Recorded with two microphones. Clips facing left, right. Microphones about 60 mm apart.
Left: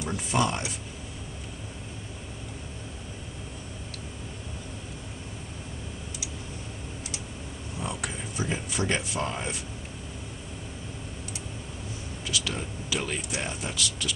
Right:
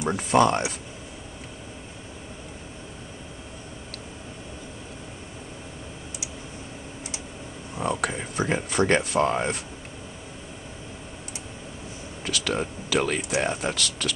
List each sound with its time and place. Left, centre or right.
0.1 s speech: right
7.8 s speech: right
12.3 s speech: right